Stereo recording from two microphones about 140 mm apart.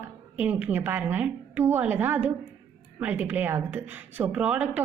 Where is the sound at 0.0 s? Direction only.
10° right (ahead or behind).